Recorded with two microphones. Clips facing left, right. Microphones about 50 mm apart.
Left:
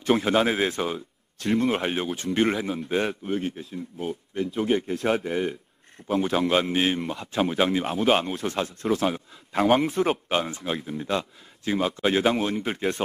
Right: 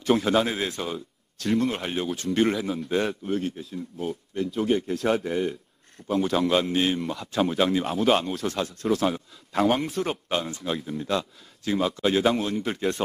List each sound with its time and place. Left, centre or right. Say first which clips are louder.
0.1 s a man's voice: left 1 dB; centre